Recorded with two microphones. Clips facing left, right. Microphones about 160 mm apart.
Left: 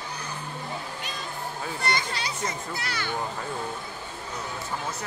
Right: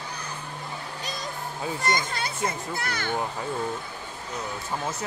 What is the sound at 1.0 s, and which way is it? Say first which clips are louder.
Music: right 1 dB; 35° right (ahead or behind).